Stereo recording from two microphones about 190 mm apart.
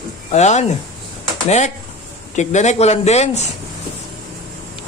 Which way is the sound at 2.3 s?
40° left (ahead or behind).